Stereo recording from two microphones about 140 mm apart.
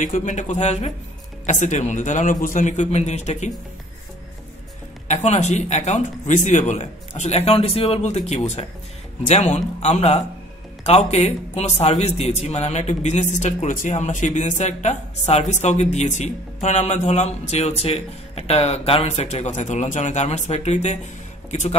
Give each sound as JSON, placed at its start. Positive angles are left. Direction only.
{"t": 0.0, "sound": "a man's voice", "side_deg": 60}
{"t": 5.0, "sound": "a man's voice", "side_deg": 55}